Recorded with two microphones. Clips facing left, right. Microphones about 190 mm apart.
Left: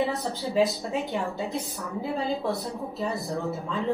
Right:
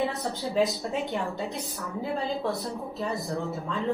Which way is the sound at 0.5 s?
Centre (ahead or behind).